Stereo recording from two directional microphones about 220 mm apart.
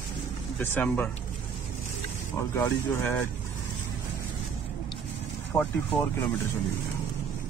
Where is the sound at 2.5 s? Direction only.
10° left (ahead or behind).